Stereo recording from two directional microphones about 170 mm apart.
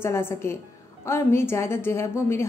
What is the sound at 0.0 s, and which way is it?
A woman's voice, 15° left (ahead or behind).